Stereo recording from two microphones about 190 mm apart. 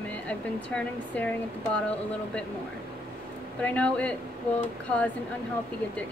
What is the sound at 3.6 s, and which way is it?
Speech, 10° left (ahead or behind).